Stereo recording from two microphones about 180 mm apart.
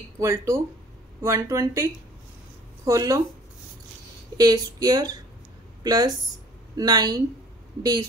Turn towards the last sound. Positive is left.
turn(degrees=-20)  # may be behind; listen again after turning